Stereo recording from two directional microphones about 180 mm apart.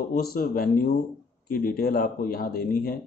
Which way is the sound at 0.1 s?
55° left (ahead or behind).